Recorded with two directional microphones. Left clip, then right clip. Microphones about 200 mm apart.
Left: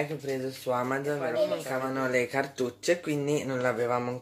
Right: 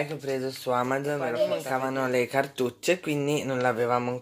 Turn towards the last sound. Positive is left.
turn(degrees=-25)  # may be behind; listen again after turning